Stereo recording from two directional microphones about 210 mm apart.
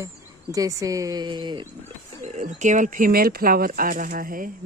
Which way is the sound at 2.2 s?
35° right (ahead or behind).